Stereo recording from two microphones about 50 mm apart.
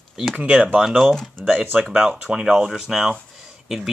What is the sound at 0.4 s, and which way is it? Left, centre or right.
Speech, right.